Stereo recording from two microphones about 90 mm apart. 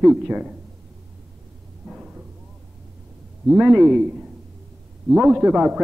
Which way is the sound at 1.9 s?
10° right (ahead or behind).